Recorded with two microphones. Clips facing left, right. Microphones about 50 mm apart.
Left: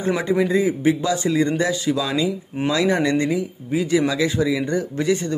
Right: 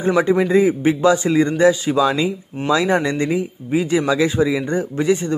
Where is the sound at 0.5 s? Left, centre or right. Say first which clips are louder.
Right 3 dB; right.